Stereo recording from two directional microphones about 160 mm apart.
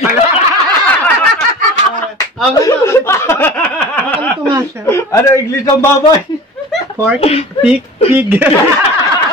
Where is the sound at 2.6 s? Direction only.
15° left (ahead or behind).